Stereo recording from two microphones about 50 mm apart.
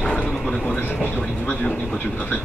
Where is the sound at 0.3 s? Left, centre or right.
Centre.